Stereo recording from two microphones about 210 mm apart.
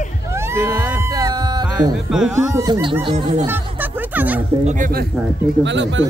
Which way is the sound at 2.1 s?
5° right (ahead or behind).